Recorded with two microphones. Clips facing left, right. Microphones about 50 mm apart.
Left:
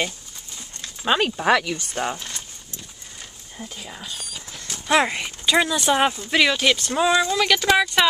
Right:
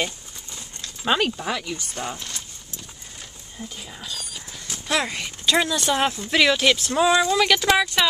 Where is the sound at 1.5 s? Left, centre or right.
Left.